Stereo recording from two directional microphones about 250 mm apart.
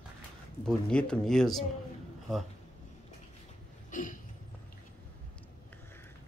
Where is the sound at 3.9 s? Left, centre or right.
Left.